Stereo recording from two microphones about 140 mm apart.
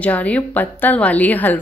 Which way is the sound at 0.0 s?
10° left (ahead or behind).